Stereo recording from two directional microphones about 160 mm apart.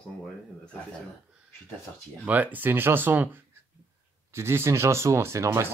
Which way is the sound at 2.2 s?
10° right (ahead or behind).